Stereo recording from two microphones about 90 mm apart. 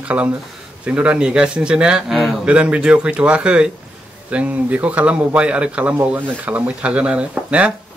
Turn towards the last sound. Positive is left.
turn(degrees=-15)  # may be behind; listen again after turning